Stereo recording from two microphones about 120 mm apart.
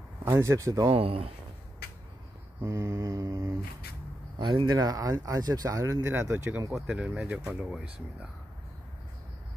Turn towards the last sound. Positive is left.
turn(degrees=-5)  # may be behind; listen again after turning